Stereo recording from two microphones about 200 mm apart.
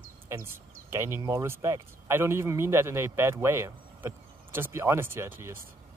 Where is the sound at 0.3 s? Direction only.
15° right (ahead or behind).